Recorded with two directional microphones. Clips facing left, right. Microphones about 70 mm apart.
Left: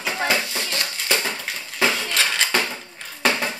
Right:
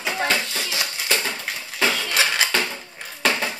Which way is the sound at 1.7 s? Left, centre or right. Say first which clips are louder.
Left 1 dB; centre.